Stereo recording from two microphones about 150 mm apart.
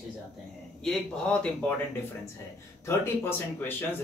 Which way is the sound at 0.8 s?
5° left (ahead or behind).